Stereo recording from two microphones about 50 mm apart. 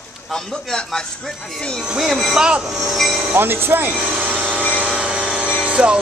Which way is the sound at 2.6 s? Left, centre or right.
Centre.